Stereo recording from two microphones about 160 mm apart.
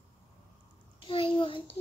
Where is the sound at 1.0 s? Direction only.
35° left (ahead or behind).